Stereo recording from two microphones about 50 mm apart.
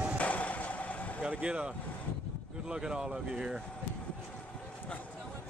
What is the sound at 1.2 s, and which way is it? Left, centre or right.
Vehicle, right.